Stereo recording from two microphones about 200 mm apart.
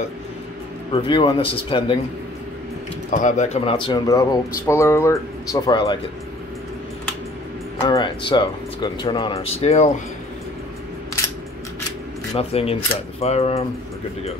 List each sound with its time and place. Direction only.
0.9 s speech: 25° left (ahead or behind)
3.1 s speech: 40° left (ahead or behind)
7.9 s speech: 25° left (ahead or behind)
12.4 s speech: 30° left (ahead or behind)